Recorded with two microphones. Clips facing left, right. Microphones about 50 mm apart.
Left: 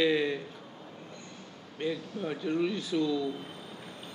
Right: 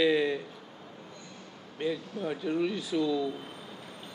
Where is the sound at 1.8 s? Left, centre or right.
Centre.